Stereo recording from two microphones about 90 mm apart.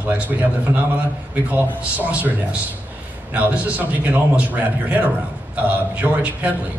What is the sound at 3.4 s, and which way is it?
A man's voice, 15° right (ahead or behind).